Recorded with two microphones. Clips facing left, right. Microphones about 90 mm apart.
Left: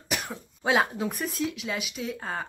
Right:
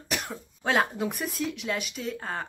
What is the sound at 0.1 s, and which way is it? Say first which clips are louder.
Speech: even; centre (ahead or behind).